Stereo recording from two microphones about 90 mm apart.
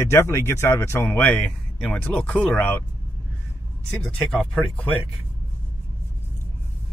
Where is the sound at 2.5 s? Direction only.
25° left (ahead or behind).